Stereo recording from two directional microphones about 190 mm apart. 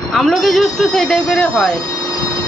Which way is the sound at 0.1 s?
Centre (ahead or behind).